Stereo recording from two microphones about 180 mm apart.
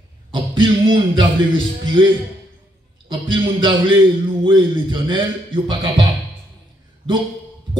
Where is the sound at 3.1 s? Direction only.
25° right (ahead or behind).